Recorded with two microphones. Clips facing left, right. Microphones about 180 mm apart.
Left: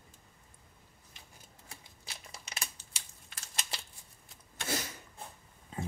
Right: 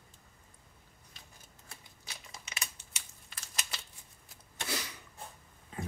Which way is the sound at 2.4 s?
35° left (ahead or behind).